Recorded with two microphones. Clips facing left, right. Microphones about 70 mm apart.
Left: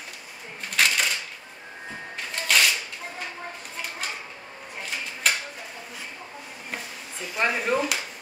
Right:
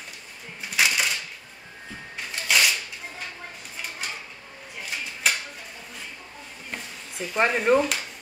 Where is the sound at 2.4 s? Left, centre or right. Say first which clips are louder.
Even; centre.